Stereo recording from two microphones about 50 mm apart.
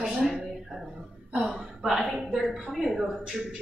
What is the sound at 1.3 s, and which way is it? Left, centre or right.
A woman's voice, centre.